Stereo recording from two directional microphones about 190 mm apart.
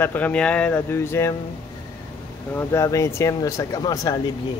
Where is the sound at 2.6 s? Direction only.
15° left (ahead or behind).